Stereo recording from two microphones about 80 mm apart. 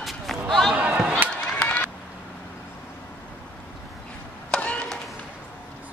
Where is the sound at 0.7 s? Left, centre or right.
Centre.